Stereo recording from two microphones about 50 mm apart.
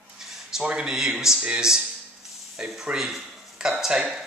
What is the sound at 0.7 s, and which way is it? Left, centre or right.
A man's voice, centre.